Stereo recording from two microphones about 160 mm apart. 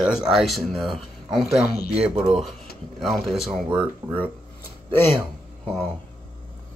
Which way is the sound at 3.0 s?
Centre (ahead or behind).